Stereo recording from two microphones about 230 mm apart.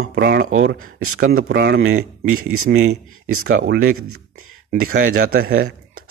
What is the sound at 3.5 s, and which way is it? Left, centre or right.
Speech, right.